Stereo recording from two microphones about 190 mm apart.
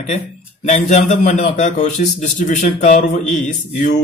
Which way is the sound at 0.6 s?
35° left (ahead or behind).